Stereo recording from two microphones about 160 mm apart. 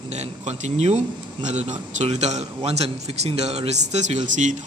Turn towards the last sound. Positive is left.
turn(degrees=-50)  # may be behind; listen again after turning